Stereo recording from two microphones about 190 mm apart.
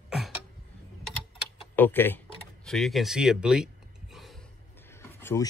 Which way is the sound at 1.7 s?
10° left (ahead or behind).